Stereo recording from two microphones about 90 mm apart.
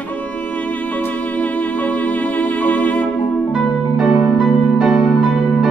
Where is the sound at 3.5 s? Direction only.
5° right (ahead or behind).